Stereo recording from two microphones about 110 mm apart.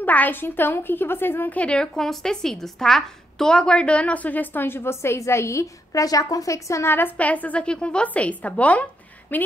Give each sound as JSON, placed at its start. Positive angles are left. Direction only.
{"t": 0.0, "sound": "a woman's voice", "side_deg": 15}